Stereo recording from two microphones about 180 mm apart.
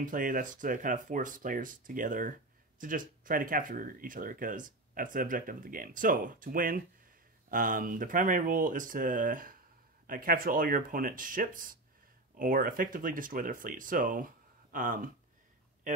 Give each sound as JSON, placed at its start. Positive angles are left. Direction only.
{"t": 0.0, "sound": "speech", "side_deg": -50}